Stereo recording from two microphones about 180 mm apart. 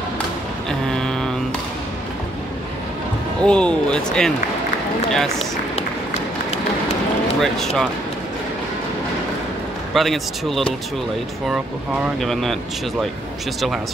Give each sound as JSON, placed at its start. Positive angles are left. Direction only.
{"t": 0.7, "sound": "a sound", "side_deg": 5}
{"t": 3.4, "sound": "speech", "side_deg": 5}
{"t": 5.8, "sound": "run", "side_deg": 35}
{"t": 7.3, "sound": "speech", "side_deg": 0}
{"t": 9.9, "sound": "speech", "side_deg": 0}
{"t": 12.2, "sound": "speech", "side_deg": 0}